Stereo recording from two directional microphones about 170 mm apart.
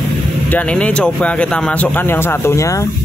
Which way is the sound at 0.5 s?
10° left (ahead or behind).